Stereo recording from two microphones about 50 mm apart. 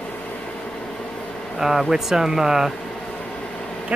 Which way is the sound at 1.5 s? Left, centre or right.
Centre.